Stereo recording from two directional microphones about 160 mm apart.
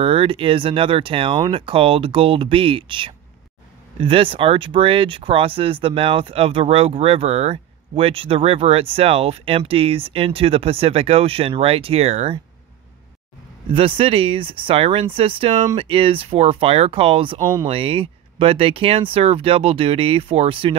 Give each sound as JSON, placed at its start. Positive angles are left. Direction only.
{"t": 0.0, "sound": "speech", "side_deg": -35}
{"t": 13.7, "sound": "speech", "side_deg": -35}